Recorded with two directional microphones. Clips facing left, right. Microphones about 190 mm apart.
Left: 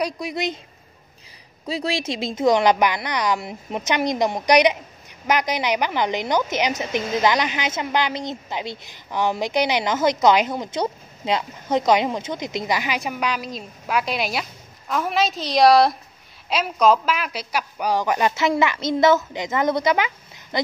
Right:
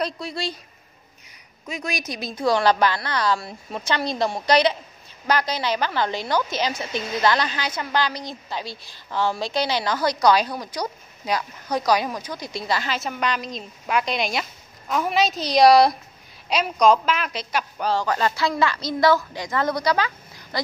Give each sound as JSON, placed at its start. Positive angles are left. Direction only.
{"t": 0.0, "sound": "a woman's voice", "side_deg": 15}
{"t": 1.7, "sound": "a woman's voice", "side_deg": 30}